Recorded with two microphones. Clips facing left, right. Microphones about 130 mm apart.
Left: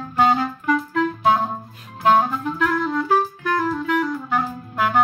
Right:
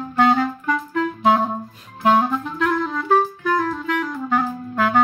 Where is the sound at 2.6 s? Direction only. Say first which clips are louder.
Left 1 dB; centre (ahead or behind).